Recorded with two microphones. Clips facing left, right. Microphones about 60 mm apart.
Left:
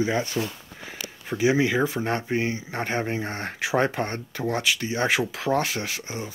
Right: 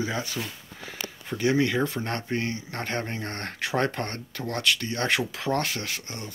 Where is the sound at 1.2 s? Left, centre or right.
Centre.